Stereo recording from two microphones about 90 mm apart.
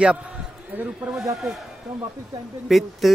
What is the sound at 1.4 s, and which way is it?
Speech, centre (ahead or behind).